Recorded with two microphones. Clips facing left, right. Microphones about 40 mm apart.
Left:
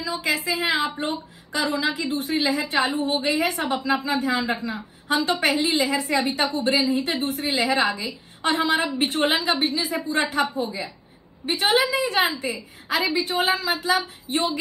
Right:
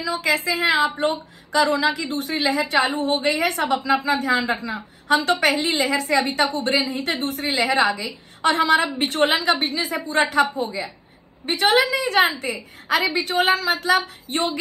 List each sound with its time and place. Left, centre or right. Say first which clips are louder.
0.0 s a woman's voice: right 3 dB; right